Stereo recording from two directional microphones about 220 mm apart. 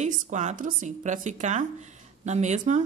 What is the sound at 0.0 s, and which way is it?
Speech, 35° right (ahead or behind).